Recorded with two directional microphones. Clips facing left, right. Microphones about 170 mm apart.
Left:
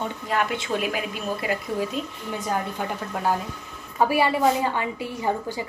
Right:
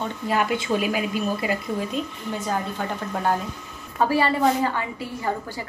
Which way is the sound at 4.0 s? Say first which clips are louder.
Even; 15° left (ahead or behind).